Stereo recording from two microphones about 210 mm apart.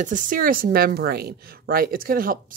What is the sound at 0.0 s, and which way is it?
Speech, 40° right (ahead or behind).